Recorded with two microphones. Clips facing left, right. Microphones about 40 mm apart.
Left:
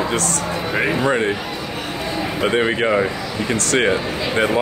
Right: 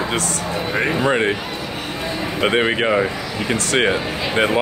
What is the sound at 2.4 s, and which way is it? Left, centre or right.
Speech, right.